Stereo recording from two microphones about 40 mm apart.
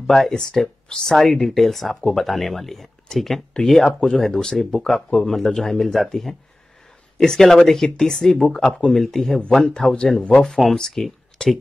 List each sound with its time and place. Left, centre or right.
0.0 s speech: centre
11.4 s speech: left